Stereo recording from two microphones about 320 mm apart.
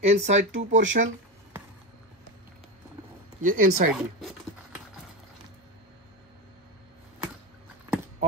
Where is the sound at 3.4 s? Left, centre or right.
Right.